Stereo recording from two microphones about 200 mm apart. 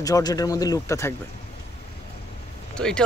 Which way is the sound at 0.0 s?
20° left (ahead or behind).